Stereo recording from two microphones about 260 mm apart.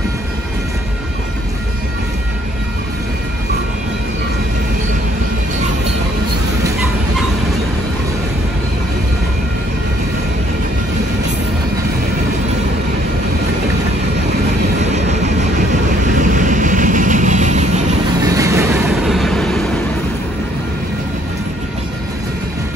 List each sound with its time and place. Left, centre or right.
14.8 s vehicle: right
18.2 s vehicle: centre
19.0 s vehicle: centre